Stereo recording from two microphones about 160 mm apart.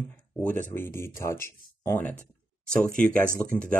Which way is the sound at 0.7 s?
15° left (ahead or behind).